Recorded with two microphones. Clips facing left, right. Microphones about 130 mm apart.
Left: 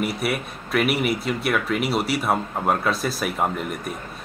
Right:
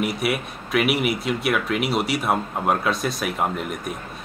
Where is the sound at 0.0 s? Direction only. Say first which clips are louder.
Right 1 dB; centre (ahead or behind).